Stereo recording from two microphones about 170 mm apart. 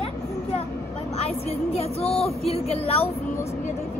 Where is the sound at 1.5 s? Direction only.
35° left (ahead or behind).